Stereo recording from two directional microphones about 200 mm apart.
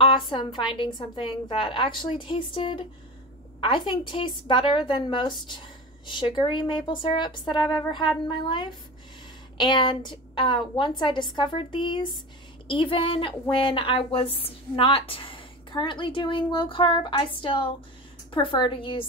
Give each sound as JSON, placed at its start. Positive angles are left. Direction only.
{"t": 0.3, "sound": "a woman's voice", "side_deg": 25}